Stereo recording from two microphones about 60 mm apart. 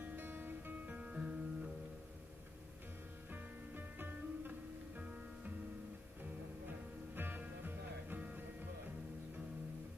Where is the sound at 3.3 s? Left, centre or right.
Right.